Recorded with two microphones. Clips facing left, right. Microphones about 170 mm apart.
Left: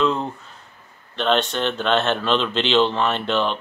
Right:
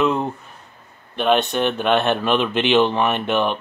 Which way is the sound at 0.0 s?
15° right (ahead or behind).